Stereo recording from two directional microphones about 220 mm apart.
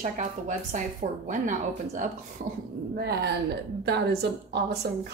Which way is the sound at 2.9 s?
45° right (ahead or behind).